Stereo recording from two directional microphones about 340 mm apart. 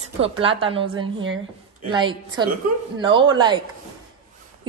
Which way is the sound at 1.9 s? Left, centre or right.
Centre.